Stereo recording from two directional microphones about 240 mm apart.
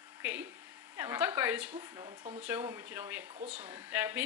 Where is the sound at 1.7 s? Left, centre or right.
Centre.